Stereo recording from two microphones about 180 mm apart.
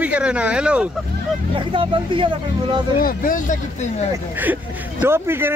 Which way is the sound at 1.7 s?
30° right (ahead or behind).